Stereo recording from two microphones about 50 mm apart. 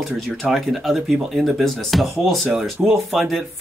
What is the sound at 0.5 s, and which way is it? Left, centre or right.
Speech, centre.